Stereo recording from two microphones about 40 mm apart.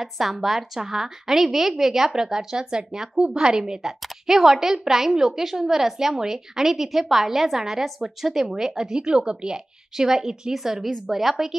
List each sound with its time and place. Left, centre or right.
0.0 s a woman's voice: centre
3.8 s a woman's voice: centre